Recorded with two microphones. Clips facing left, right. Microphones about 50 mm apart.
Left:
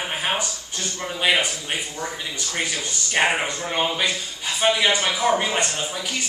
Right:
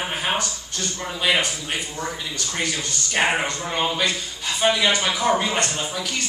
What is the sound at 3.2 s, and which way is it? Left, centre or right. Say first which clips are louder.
Speech: even; centre.